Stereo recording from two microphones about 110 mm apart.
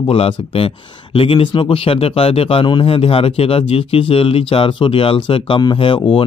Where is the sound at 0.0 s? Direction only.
55° left (ahead or behind).